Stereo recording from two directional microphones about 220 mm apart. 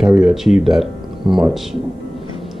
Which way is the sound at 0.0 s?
5° right (ahead or behind).